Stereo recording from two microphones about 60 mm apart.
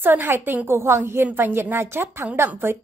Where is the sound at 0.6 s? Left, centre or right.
Right.